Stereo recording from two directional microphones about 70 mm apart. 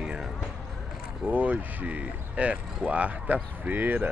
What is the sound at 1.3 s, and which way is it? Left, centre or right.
Speech, right.